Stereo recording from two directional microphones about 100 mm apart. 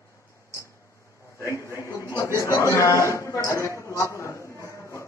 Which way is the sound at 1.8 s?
30° left (ahead or behind).